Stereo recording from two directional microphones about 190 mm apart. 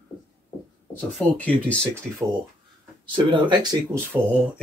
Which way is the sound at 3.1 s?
25° right (ahead or behind).